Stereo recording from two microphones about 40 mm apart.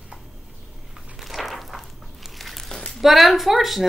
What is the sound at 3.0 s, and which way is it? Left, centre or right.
Speech, centre.